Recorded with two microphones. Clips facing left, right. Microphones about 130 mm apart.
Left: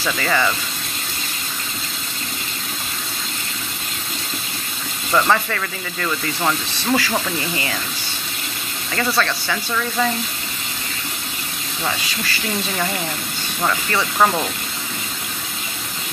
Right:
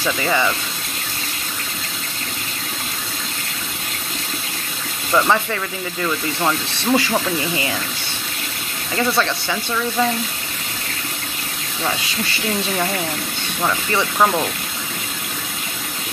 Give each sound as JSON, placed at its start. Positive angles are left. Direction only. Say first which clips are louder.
{"t": 0.0, "sound": "speech", "louder": "right 1 dB", "side_deg": -15}
{"t": 5.1, "sound": "speech", "louder": "right 1 dB", "side_deg": -10}
{"t": 7.0, "sound": "speech", "louder": "right 2 dB", "side_deg": -20}
{"t": 9.2, "sound": "speech", "louder": "right 1 dB", "side_deg": -15}
{"t": 14.1, "sound": "speech", "louder": "even", "side_deg": -5}